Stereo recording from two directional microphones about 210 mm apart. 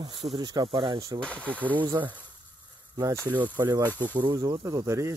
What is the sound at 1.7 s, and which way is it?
Speech, 20° right (ahead or behind).